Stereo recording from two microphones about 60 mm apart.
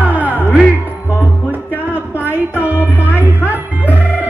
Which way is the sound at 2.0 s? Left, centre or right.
Right.